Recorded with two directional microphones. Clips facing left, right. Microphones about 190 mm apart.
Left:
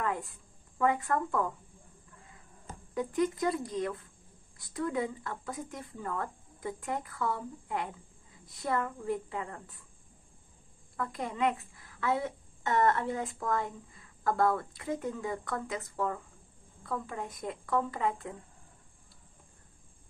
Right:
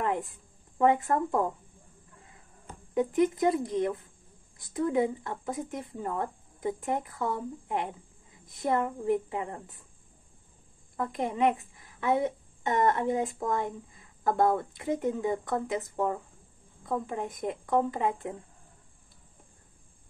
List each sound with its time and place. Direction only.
0.0 s a sound: 20° right (ahead or behind)
0.7 s a woman's voice: 25° right (ahead or behind)
2.9 s a woman's voice: 20° right (ahead or behind)
11.0 s a woman's voice: 20° right (ahead or behind)